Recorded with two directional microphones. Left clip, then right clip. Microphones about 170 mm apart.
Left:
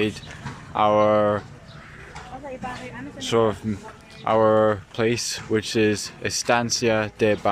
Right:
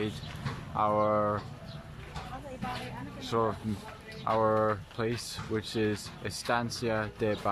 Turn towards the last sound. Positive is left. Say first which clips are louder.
# left 10 dB
turn(degrees=15)  # may be behind; listen again after turning